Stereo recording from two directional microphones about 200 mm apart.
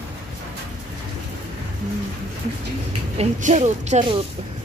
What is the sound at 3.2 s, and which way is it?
Speech, 35° right (ahead or behind).